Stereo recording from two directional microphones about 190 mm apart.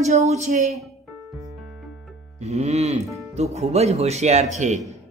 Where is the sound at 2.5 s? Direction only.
35° right (ahead or behind).